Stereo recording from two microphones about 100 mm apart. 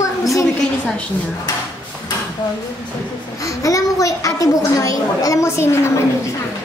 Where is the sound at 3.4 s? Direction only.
35° left (ahead or behind).